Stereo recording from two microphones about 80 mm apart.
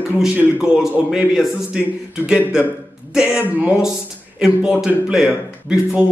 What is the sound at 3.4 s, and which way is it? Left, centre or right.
Speech, right.